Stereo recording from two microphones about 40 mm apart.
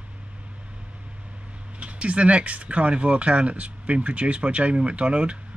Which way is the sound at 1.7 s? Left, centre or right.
Right.